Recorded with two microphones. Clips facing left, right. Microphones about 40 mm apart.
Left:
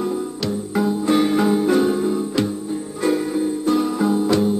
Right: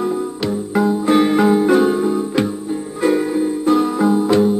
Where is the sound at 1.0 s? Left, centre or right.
Centre.